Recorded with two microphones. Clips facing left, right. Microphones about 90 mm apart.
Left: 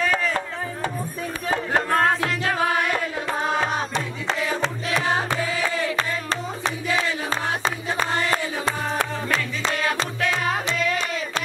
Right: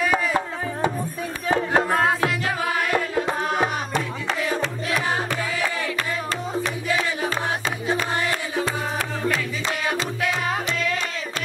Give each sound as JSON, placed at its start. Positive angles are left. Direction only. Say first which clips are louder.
{"t": 0.0, "sound": "music", "louder": "right 1 dB", "side_deg": -10}
{"t": 1.5, "sound": "music", "louder": "right 2 dB", "side_deg": -15}
{"t": 3.9, "sound": "music", "louder": "right 1 dB", "side_deg": 25}
{"t": 6.6, "sound": "a sound", "louder": "left 1 dB", "side_deg": 25}